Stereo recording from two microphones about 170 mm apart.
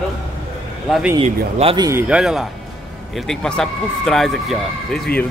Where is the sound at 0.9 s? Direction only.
5° right (ahead or behind).